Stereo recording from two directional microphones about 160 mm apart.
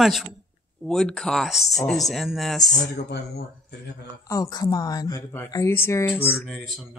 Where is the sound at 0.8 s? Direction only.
5° left (ahead or behind).